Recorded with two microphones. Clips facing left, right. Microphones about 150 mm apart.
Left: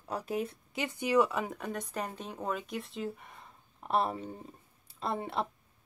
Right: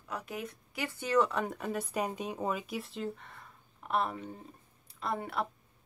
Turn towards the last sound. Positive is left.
turn(degrees=25)  # may be behind; listen again after turning